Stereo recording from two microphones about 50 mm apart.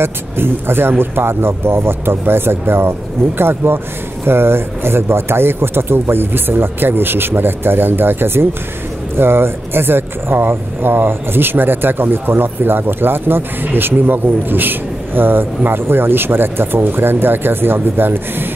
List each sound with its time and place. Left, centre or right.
0.0 s speech: right